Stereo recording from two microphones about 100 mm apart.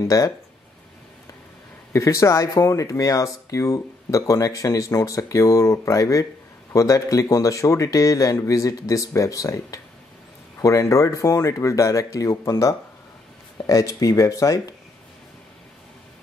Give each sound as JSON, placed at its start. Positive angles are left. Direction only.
{"t": 0.0, "sound": "speech", "side_deg": 35}
{"t": 1.9, "sound": "speech", "side_deg": 30}